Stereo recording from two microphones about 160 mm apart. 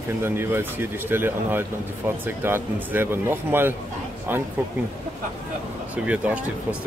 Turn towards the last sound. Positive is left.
turn(degrees=-10)  # may be behind; listen again after turning